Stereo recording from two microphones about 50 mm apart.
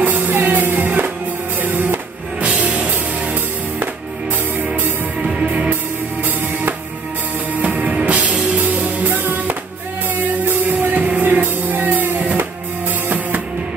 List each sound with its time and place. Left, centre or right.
0.0 s music: right
2.4 s music: right
5.2 s music: right
7.6 s music: right
9.1 s music: right